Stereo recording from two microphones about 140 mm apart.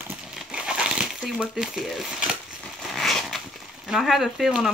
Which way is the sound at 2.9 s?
Centre (ahead or behind).